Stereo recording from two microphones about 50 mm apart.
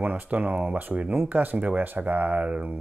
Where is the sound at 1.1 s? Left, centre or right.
Right.